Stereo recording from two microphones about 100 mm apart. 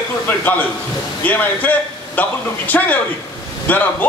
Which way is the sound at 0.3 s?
15° left (ahead or behind).